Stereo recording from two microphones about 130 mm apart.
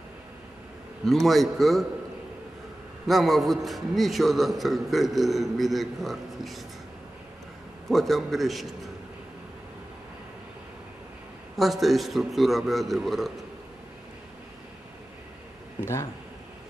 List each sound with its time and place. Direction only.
1.0 s a man's voice: centre (ahead or behind)
3.1 s a man's voice: centre (ahead or behind)
7.9 s a man's voice: centre (ahead or behind)
11.5 s a man's voice: centre (ahead or behind)
15.8 s a man's voice: 20° left (ahead or behind)